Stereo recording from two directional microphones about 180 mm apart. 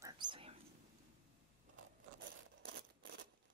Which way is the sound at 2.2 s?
75° right (ahead or behind).